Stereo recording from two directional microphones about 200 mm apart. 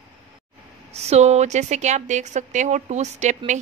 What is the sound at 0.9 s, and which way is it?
A woman's voice, 30° right (ahead or behind).